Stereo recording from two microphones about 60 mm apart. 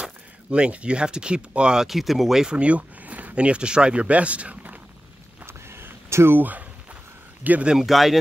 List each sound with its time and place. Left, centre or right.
0.0 s speech: centre
1.9 s speech: centre; by 4.7 s right
5.4 s a sound: right
7.6 s speech: centre